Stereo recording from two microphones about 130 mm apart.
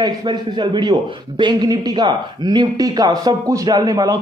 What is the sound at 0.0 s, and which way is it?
A man's voice, 35° right (ahead or behind).